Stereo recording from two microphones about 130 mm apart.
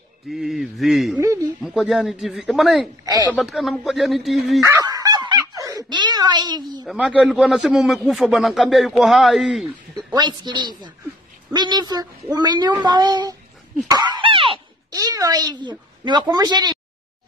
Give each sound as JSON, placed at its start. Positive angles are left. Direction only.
{"t": 0.3, "sound": "a man's voice", "side_deg": 0}
{"t": 1.2, "sound": "speech", "side_deg": -20}
{"t": 1.6, "sound": "a man's voice", "side_deg": 0}
{"t": 4.6, "sound": "a sound", "side_deg": -25}
{"t": 6.9, "sound": "a man's voice", "side_deg": -10}
{"t": 10.1, "sound": "speech", "side_deg": -35}
{"t": 15.0, "sound": "speech", "side_deg": -30}